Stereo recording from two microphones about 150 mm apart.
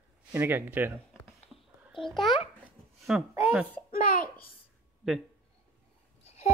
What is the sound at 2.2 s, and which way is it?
Speech, 30° left (ahead or behind).